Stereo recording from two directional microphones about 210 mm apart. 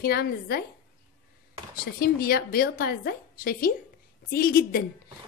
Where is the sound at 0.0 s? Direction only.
45° left (ahead or behind).